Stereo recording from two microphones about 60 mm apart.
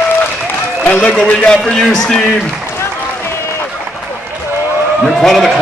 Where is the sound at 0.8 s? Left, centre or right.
Centre.